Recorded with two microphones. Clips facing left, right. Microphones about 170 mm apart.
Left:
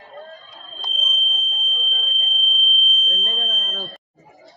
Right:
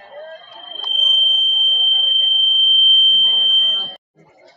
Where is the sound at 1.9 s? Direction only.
35° right (ahead or behind).